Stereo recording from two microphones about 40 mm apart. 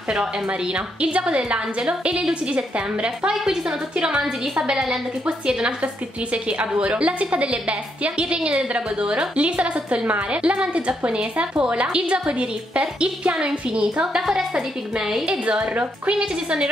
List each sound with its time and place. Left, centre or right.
1.0 s a woman's voice: right
6.6 s a woman's voice: right
16.1 s a woman's voice: right